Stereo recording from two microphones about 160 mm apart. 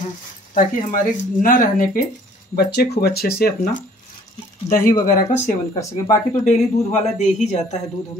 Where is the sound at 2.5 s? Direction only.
80° left.